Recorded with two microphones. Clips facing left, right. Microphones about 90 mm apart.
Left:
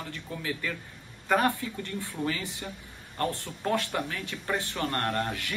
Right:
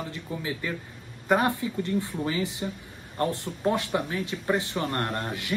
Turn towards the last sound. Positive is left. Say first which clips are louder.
# even
turn(degrees=-20)  # may be behind; listen again after turning